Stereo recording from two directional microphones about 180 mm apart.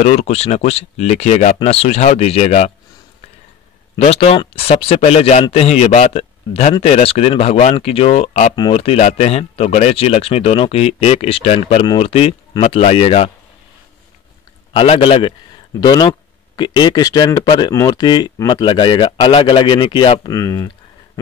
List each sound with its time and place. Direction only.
0.0 s speech: 35° left (ahead or behind)
3.9 s speech: 35° left (ahead or behind)
14.7 s speech: 30° left (ahead or behind)